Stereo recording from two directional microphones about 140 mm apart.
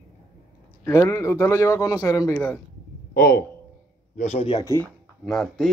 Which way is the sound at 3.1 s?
90° left.